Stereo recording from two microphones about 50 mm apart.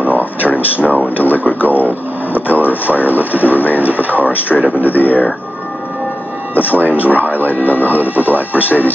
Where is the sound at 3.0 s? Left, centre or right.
Left.